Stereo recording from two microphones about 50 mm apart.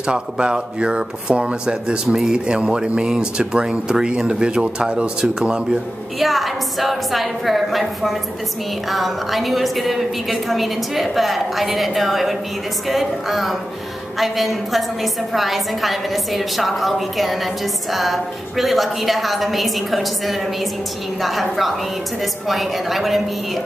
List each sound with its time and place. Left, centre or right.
0.0 s speech: centre
2.0 s speech: centre
2.3 s speech: centre
6.1 s a woman's voice: centre